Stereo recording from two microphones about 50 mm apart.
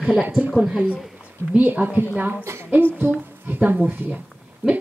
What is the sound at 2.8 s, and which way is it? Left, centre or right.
Speech, right.